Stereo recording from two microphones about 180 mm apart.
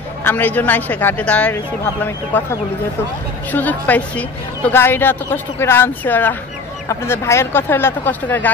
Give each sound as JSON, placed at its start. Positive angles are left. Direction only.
{"t": 0.2, "sound": "a woman's voice", "side_deg": 10}
{"t": 3.5, "sound": "a woman's voice", "side_deg": 10}